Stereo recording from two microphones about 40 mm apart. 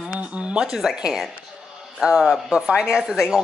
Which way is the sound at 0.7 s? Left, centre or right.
Centre.